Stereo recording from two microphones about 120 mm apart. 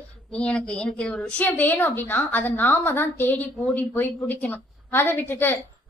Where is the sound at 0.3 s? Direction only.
10° left (ahead or behind).